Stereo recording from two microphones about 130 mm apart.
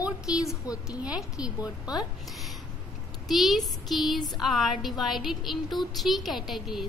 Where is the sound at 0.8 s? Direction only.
5° right (ahead or behind).